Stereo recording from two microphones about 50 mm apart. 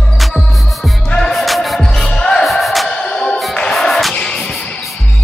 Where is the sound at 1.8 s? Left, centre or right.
Centre.